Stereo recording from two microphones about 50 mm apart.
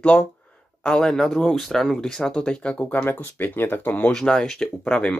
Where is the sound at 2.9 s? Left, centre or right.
Left.